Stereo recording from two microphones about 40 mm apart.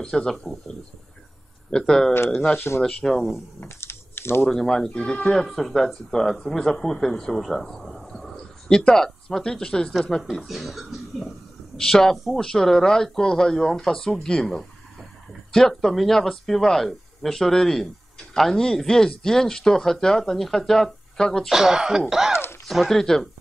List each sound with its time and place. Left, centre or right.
0.0 s speech: centre
1.7 s speech: centre
2.7 s speech: centre
3.6 s typing: left
4.5 s speech: centre
5.3 s speech: centre
8.1 s a sound: centre
8.6 s speech: centre
10.3 s a sound: centre
11.8 s speech: centre
14.2 s a sound: centre
15.7 s speech: centre
21.5 s speech: centre
22.7 s speech: centre